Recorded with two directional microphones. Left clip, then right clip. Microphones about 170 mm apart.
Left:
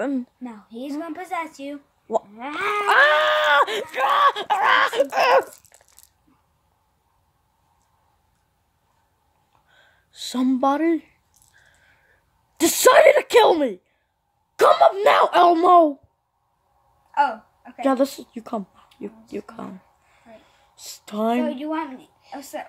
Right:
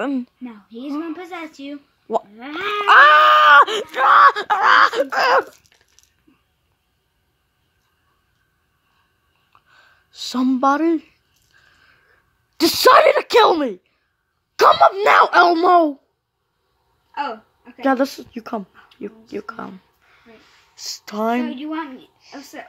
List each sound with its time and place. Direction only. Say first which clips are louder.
0.0 s a woman's voice: right 2 dB; centre (ahead or behind)
0.4 s speech: even; 60° left (ahead or behind)
2.9 s a woman's voice: right 7 dB; 5° left (ahead or behind)
9.8 s speech: right 4 dB; centre (ahead or behind)
12.5 s a woman's voice: right 3 dB; centre (ahead or behind)
17.7 s a woman's voice: right 2 dB; 5° left (ahead or behind)
20.7 s a woman's voice: right 4 dB; 5° left (ahead or behind)